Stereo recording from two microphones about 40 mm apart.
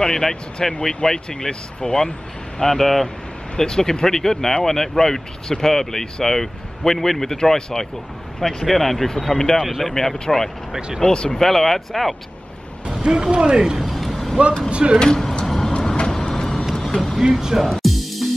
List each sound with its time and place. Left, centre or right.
0.0 s speech: centre
2.6 s speech: centre
3.5 s speech: centre
9.1 s speech: centre
9.6 s speech: centre
9.8 s speech: centre
11.4 s speech: centre
12.8 s speech: centre
13.7 s a sound: centre
14.7 s speech: right
15.0 s speech: centre
15.4 s vehicle: centre
17.3 s speech: centre
17.8 s music: centre